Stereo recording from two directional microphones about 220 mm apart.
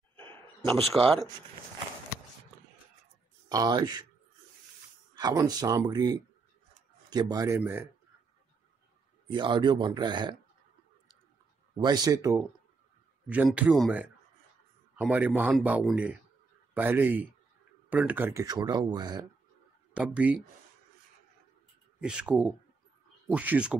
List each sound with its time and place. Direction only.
0.2 s a sound: 10° left (ahead or behind)
0.9 s speech: centre (ahead or behind)
3.4 s speech: 15° right (ahead or behind)
5.1 s speech: 15° right (ahead or behind)
9.3 s speech: 20° right (ahead or behind)
11.7 s speech: 20° right (ahead or behind)
19.9 s speech: 5° right (ahead or behind)
22.0 s speech: 5° right (ahead or behind)